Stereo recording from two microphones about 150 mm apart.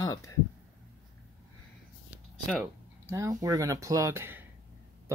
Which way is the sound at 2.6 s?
15° right (ahead or behind).